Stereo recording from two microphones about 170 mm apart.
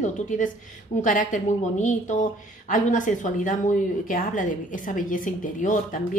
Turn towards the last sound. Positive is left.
turn(degrees=50)  # may be behind; listen again after turning